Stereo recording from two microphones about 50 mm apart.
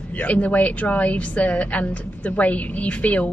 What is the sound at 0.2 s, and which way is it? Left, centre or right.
A woman's voice, left.